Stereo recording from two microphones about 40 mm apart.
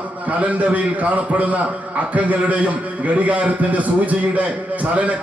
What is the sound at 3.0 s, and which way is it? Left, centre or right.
A man's voice, right.